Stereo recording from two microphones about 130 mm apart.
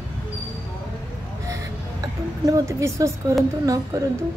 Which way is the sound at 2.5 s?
25° right (ahead or behind).